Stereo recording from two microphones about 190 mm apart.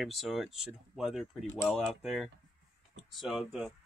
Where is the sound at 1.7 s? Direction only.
Centre (ahead or behind).